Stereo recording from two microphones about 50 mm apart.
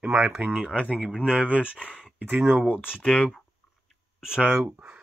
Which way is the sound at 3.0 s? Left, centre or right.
Left.